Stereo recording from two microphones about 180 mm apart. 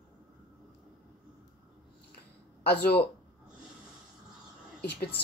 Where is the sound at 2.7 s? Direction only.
65° left (ahead or behind).